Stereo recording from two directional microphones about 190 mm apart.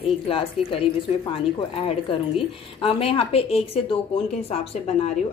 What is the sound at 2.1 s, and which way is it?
A woman's voice, 30° left (ahead or behind).